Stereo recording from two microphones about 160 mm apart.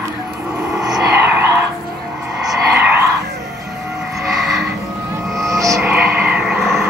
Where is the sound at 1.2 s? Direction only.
15° right (ahead or behind).